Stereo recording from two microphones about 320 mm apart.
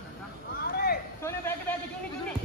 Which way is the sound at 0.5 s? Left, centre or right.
Left.